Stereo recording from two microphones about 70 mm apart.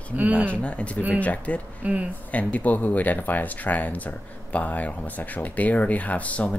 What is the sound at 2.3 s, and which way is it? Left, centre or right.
Speech, left.